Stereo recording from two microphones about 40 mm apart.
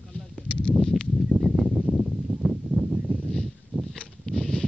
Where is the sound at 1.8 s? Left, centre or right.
Centre.